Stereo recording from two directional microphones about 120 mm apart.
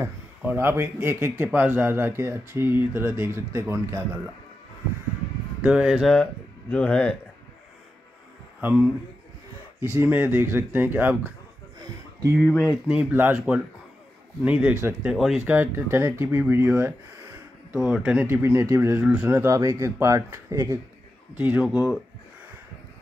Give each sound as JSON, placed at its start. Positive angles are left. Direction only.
{"t": 0.0, "sound": "speech", "side_deg": -15}
{"t": 5.7, "sound": "speech", "side_deg": -10}
{"t": 6.7, "sound": "speech", "side_deg": 10}
{"t": 8.5, "sound": "speech", "side_deg": -15}
{"t": 12.4, "sound": "speech", "side_deg": 15}
{"t": 13.1, "sound": "speech", "side_deg": -15}
{"t": 15.0, "sound": "speech", "side_deg": 0}
{"t": 15.5, "sound": "speech", "side_deg": -20}
{"t": 17.7, "sound": "speech", "side_deg": 0}
{"t": 18.2, "sound": "speech", "side_deg": -20}
{"t": 21.6, "sound": "speech", "side_deg": -5}